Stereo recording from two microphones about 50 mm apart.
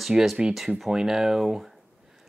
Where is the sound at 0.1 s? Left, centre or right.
Centre.